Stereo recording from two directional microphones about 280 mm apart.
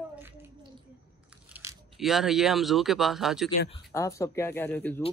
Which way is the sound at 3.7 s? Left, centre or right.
Centre.